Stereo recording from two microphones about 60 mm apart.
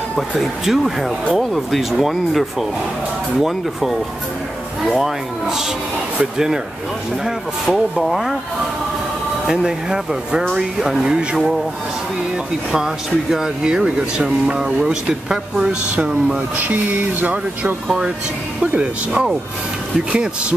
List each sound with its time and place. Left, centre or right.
0.4 s speech: centre
9.5 s speech: centre
12.7 s speech: centre
16.5 s speech: right
17.8 s speech: centre